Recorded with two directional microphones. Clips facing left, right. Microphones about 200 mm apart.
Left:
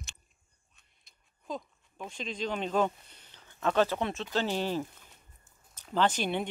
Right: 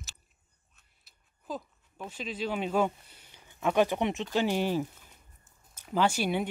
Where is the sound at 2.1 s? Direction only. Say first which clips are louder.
Right 1 dB; 5° right (ahead or behind).